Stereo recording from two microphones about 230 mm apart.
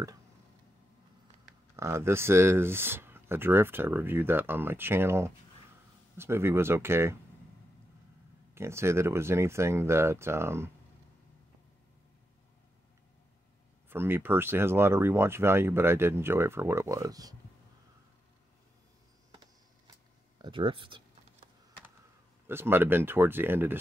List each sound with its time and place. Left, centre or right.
1.8 s speech: centre
8.5 s speech: centre
13.8 s speech: centre
20.3 s speech: right
22.5 s speech: centre